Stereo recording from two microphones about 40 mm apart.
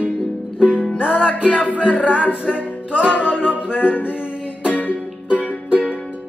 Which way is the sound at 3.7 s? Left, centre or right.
Left.